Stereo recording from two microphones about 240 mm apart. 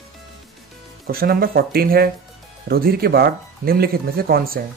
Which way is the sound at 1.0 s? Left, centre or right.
Right.